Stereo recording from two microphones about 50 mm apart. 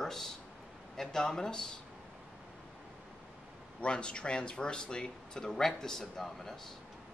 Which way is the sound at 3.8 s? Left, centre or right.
Centre.